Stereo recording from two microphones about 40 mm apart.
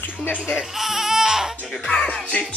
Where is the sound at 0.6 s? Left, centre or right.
Centre.